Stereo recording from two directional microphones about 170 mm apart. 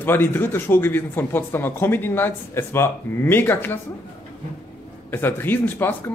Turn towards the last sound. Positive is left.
turn(degrees=10)  # may be behind; listen again after turning